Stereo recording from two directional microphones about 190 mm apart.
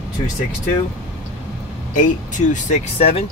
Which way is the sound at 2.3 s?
40° left (ahead or behind).